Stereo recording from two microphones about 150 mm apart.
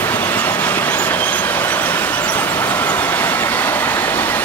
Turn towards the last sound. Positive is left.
turn(degrees=15)  # may be behind; listen again after turning